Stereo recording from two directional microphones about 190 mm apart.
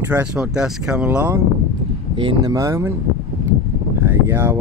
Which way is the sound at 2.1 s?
20° right (ahead or behind).